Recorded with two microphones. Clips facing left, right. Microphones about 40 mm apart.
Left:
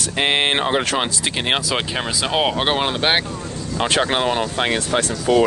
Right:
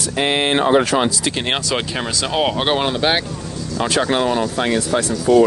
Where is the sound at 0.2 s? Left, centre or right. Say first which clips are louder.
Right 1 dB; left.